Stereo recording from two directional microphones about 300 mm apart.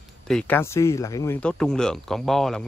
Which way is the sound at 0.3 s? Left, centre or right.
Centre.